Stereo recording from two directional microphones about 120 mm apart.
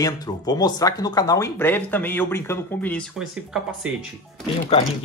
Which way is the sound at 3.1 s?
5° right (ahead or behind).